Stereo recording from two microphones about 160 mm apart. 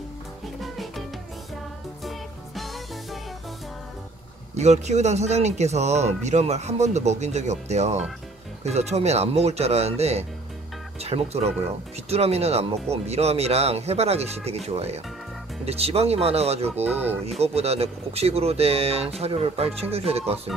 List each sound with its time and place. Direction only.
0.6 s music: centre (ahead or behind)
2.0 s music: centre (ahead or behind)
4.6 s speech: 45° right (ahead or behind)
16.9 s speech: 10° right (ahead or behind)
17.3 s speech: 40° right (ahead or behind)